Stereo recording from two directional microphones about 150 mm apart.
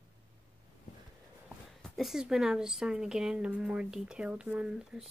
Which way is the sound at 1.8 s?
Centre (ahead or behind).